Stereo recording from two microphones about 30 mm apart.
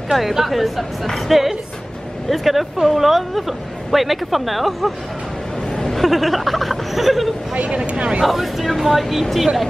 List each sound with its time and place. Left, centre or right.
0.1 s speech: centre
5.9 s speech: centre
7.5 s speech: right
8.3 s speech: centre